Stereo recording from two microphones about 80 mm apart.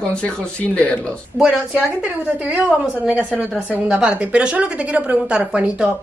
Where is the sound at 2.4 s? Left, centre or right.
Centre.